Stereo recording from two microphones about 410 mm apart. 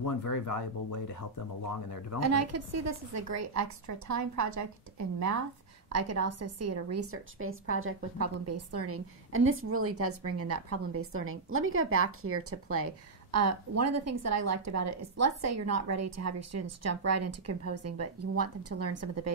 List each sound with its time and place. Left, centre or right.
0.0 s speech: left
2.1 s a woman's voice: right